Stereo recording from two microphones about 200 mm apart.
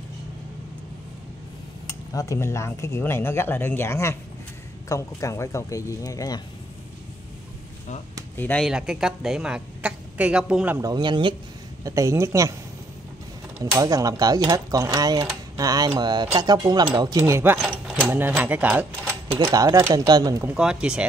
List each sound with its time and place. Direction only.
2.1 s speech: 15° left (ahead or behind)
8.4 s speech: 10° left (ahead or behind)
8.6 s a woman's voice: 5° right (ahead or behind)
10.8 s speech: 20° right (ahead or behind)
13.6 s speech: 15° right (ahead or behind)
20.5 s a woman's voice: 5° right (ahead or behind)